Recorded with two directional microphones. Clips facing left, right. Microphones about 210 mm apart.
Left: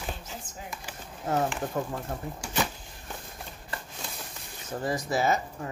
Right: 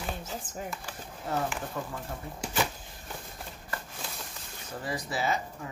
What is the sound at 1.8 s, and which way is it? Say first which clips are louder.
Speech: left 7 dB; 45° left (ahead or behind).